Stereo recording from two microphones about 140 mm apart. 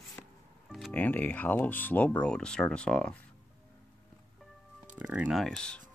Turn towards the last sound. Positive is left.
turn(degrees=5)  # may be behind; listen again after turning